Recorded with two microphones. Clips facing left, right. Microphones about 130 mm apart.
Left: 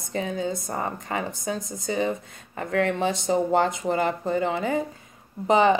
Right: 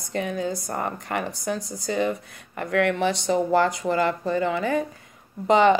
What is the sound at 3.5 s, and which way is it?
Speech, 25° left (ahead or behind).